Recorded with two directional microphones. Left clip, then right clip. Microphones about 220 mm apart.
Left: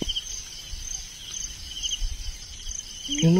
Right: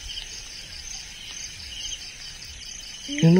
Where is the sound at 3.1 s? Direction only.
20° right (ahead or behind).